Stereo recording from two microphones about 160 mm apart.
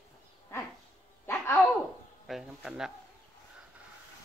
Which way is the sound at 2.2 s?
Centre (ahead or behind).